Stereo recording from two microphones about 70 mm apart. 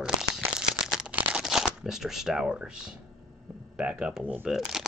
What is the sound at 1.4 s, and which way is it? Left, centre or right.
Speech, centre.